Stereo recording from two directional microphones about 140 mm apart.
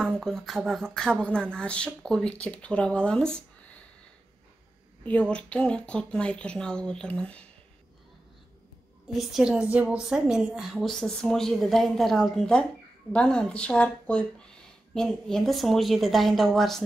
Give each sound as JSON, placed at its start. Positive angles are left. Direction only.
{"t": 0.0, "sound": "a woman's voice", "side_deg": 5}
{"t": 5.0, "sound": "speech", "side_deg": 10}
{"t": 9.1, "sound": "a woman's voice", "side_deg": -5}